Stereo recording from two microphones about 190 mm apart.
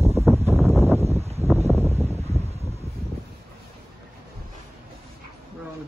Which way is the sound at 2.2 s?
35° right (ahead or behind).